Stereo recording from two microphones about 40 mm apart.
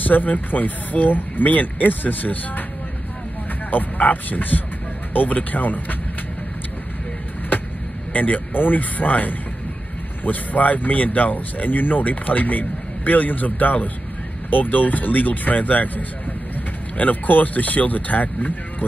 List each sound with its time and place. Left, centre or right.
0.0 s speech: left
3.7 s speech: left
8.1 s speech: left
16.9 s speech: left